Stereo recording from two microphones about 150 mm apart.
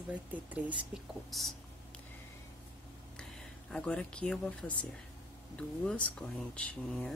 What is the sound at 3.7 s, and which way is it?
Speech, 5° left (ahead or behind).